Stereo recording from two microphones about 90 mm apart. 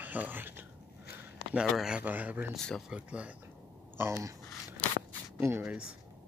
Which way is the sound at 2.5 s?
5° left (ahead or behind).